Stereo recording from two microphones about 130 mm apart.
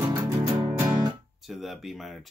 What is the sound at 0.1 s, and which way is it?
Music, 25° right (ahead or behind).